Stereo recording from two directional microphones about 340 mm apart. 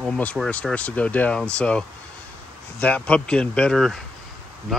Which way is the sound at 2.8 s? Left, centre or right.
Centre.